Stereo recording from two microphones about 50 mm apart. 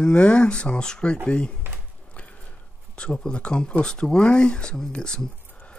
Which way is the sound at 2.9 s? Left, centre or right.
Centre.